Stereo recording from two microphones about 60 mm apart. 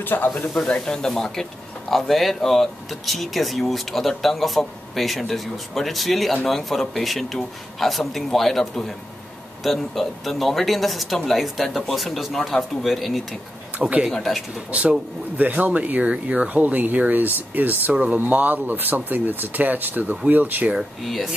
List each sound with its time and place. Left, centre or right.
0.0 s speech: left
0.3 s speech: centre
13.7 s speech: right
14.1 s speech: centre
14.7 s speech: right
20.7 s speech: centre